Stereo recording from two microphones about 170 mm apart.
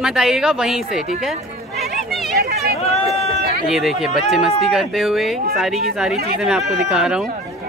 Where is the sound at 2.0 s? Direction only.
Centre (ahead or behind).